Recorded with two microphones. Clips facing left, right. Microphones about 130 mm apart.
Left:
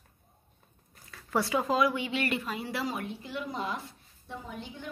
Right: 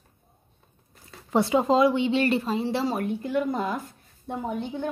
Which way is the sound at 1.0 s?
25° right (ahead or behind).